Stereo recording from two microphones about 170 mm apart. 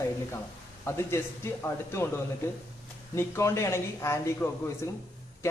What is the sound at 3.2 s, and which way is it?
Speech, 15° left (ahead or behind).